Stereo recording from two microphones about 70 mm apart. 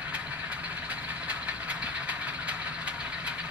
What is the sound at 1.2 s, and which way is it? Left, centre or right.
Vehicle, right.